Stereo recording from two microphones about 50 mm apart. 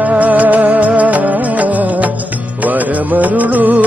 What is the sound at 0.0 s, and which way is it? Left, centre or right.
Music, right.